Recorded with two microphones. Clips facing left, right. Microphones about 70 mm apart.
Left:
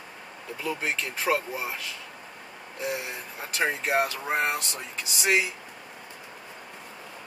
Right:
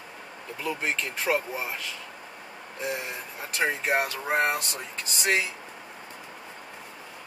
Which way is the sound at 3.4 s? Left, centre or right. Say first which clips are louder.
Even; centre.